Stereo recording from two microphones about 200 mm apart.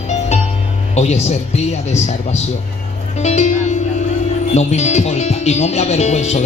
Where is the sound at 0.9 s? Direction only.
35° left (ahead or behind).